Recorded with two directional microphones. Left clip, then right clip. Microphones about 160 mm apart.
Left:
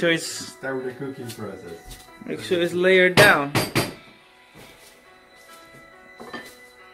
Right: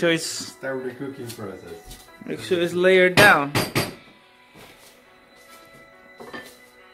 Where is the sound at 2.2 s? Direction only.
15° right (ahead or behind).